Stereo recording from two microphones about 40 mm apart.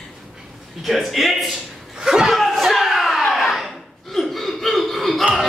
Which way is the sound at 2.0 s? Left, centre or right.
Centre.